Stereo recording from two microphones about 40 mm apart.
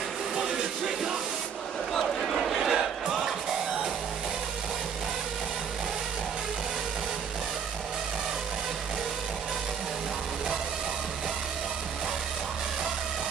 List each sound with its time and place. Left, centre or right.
0.4 s a sound: centre
2.2 s crowd: centre
2.7 s crowd: centre